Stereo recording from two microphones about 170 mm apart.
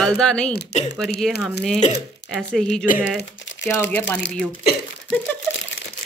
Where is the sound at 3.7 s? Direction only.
15° left (ahead or behind).